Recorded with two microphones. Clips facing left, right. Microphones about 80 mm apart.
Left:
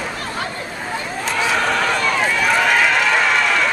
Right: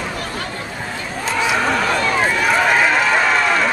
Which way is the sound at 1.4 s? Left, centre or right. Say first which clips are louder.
Right 1 dB; centre.